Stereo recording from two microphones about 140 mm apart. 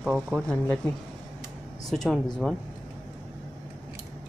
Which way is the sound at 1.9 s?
Centre (ahead or behind).